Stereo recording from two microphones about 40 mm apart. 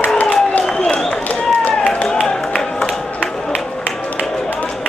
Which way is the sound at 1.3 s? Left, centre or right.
Left.